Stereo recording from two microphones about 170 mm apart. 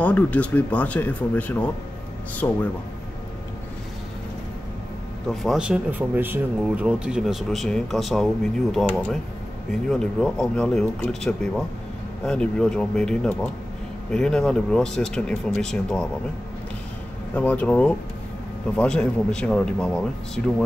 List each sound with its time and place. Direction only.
0.0 s speech: 10° left (ahead or behind)
5.3 s speech: centre (ahead or behind)
9.7 s speech: centre (ahead or behind)
17.3 s speech: 10° left (ahead or behind)